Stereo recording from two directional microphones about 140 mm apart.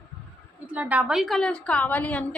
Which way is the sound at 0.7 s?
10° right (ahead or behind).